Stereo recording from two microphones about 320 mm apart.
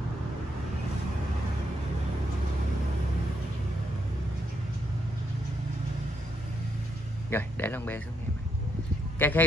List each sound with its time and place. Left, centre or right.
7.2 s speech: centre
9.2 s a man's voice: centre